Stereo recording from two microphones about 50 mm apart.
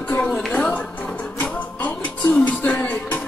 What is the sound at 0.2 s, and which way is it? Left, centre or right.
Speech, centre.